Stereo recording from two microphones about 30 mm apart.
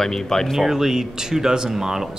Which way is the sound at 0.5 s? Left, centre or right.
Centre.